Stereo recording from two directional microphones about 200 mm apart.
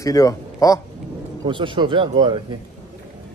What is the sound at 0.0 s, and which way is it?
Speech, 15° left (ahead or behind).